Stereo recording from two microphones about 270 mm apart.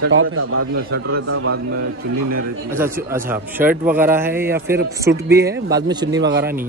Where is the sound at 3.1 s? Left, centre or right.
Centre.